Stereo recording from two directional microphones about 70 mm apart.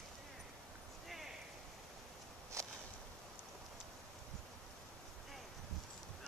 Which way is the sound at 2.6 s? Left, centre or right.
Right.